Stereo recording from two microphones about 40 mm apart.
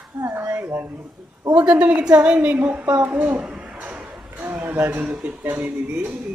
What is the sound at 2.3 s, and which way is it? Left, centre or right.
Speech, right.